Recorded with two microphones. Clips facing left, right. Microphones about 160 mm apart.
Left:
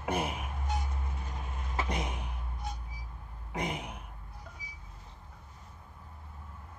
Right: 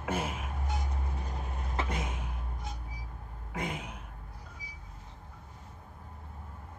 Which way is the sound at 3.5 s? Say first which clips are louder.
Left 1 dB; 15° left (ahead or behind).